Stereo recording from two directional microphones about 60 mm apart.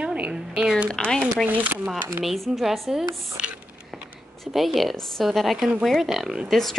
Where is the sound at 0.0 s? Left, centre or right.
Centre.